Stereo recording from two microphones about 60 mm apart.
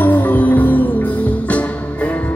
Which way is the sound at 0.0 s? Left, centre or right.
Left.